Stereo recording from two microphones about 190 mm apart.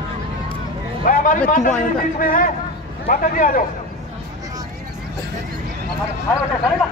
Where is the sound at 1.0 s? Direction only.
45° left (ahead or behind).